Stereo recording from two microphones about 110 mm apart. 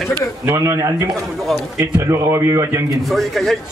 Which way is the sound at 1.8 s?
25° right (ahead or behind).